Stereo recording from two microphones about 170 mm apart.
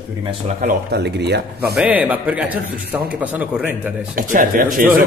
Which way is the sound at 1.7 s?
10° right (ahead or behind).